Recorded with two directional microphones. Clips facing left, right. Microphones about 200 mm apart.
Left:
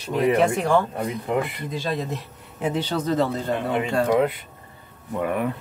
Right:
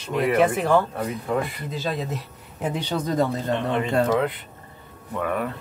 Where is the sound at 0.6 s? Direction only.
5° right (ahead or behind).